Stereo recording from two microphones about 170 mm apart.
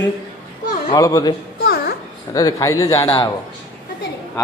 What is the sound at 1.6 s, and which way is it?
Babbling, 60° left (ahead or behind).